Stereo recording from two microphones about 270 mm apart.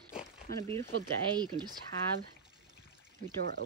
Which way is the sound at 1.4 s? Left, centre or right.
Centre.